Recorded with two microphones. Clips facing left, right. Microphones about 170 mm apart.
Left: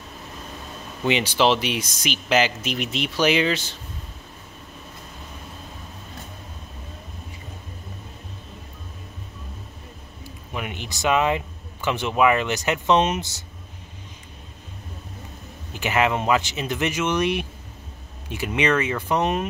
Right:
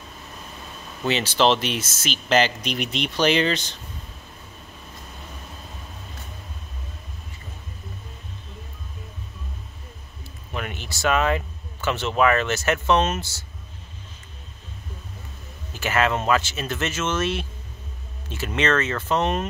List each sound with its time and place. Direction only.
1.0 s speech: 15° left (ahead or behind)
10.5 s speech: 15° left (ahead or behind)
15.7 s speech: 15° left (ahead or behind)